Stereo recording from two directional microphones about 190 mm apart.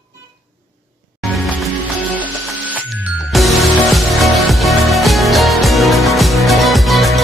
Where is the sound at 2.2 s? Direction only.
10° right (ahead or behind).